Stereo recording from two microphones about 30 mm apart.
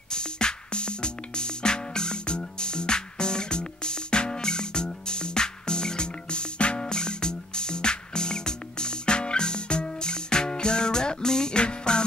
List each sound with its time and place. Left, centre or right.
0.1 s music: left